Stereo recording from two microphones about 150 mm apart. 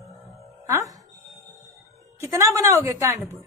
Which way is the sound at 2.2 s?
20° right (ahead or behind).